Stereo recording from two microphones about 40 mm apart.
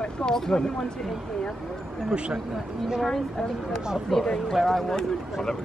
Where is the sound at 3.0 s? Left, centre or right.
Centre.